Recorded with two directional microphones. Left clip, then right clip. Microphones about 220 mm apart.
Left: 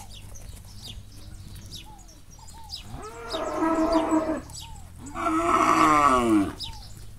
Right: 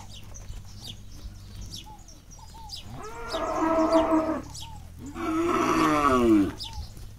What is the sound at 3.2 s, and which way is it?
Whale vocalization, 45° left (ahead or behind).